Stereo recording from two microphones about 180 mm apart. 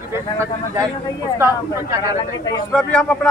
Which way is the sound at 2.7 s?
5° left (ahead or behind).